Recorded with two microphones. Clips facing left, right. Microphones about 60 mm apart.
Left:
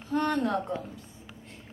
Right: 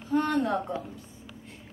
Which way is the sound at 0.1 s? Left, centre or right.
Centre.